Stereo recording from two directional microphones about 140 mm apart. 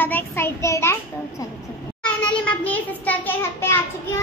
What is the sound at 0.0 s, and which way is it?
Child singing, 15° left (ahead or behind).